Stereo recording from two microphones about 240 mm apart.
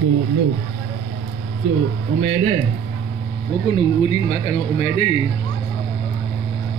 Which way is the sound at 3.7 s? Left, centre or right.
Left.